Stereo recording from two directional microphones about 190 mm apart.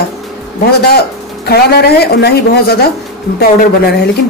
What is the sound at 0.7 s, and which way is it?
A woman's voice, 55° left (ahead or behind).